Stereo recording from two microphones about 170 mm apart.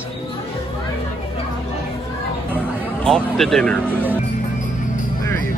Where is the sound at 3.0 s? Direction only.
Centre (ahead or behind).